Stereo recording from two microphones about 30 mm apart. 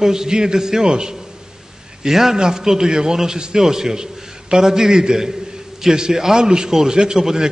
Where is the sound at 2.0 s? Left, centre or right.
Centre.